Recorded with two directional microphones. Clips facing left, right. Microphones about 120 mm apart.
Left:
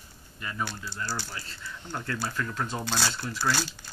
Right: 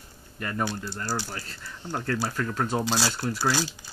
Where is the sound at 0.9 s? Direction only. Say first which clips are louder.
Right 3 dB; 45° right (ahead or behind).